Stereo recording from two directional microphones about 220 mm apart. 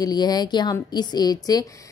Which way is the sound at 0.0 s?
15° left (ahead or behind).